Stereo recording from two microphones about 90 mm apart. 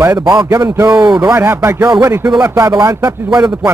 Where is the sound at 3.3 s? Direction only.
10° right (ahead or behind).